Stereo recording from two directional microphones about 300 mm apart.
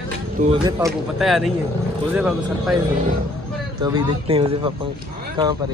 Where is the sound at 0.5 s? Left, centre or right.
Centre.